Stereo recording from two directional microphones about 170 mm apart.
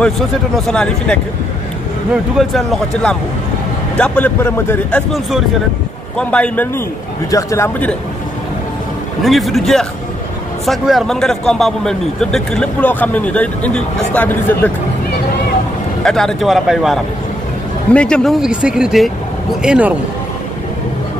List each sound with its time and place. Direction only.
0.7 s a man's voice: 5° left (ahead or behind)
2.3 s a man's voice: centre (ahead or behind)
6.1 s speech: 5° left (ahead or behind)
9.2 s a man's voice: centre (ahead or behind)
16.0 s a man's voice: 5° left (ahead or behind)